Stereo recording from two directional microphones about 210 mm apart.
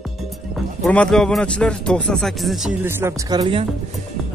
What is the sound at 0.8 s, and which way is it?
A man's voice, 5° left (ahead or behind).